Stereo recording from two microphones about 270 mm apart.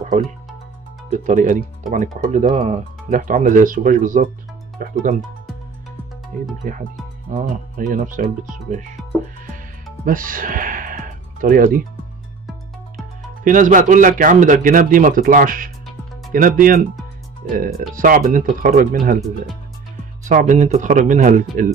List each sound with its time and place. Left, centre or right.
1.1 s speech: right
6.6 s speech: right
10.0 s speech: right
13.4 s speech: right
20.2 s speech: right